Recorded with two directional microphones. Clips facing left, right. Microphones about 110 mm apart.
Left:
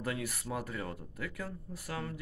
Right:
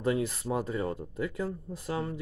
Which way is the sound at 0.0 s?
25° right (ahead or behind).